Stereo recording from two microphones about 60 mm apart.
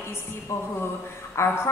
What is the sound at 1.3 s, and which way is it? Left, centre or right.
Speech, left.